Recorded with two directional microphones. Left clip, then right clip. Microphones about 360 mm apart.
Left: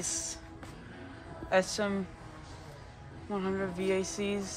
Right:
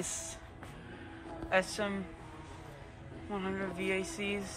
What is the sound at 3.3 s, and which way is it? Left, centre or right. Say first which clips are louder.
Speech: left 4 dB; centre.